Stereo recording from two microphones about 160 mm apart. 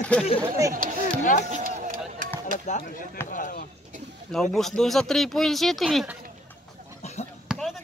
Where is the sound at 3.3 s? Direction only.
55° left (ahead or behind).